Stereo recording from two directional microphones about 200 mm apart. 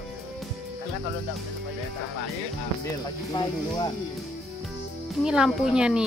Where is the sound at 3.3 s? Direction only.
20° left (ahead or behind).